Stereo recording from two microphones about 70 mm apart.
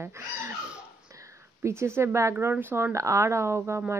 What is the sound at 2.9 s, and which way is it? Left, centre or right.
Speech, right.